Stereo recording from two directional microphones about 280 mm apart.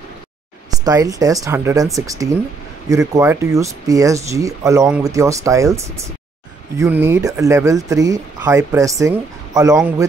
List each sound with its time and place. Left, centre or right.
0.7 s speech: centre